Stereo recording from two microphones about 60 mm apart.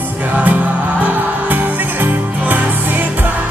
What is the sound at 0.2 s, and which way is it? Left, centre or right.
Music, right.